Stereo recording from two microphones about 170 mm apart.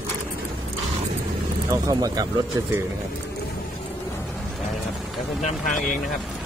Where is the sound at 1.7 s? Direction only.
20° right (ahead or behind).